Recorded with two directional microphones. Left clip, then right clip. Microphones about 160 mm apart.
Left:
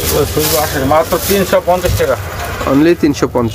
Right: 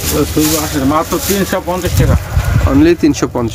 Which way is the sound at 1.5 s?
10° left (ahead or behind).